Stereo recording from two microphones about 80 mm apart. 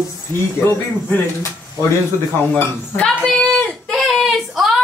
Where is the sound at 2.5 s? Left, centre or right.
Centre.